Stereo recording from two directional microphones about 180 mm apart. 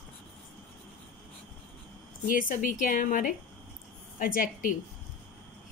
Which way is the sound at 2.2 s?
50° left (ahead or behind).